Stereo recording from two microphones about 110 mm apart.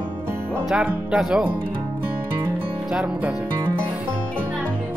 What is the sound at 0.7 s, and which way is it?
Speech, 10° right (ahead or behind).